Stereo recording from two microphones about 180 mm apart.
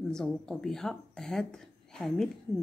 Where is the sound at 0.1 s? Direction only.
5° left (ahead or behind).